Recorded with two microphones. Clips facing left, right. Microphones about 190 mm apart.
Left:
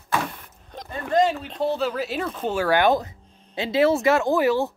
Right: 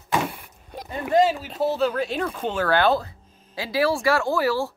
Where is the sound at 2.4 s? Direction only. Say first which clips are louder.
Left 1 dB; 10° left (ahead or behind).